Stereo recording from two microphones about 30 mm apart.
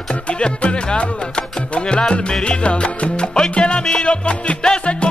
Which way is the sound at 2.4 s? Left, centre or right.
Left.